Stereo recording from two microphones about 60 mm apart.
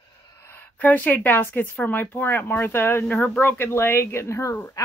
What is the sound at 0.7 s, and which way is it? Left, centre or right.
Speech, left.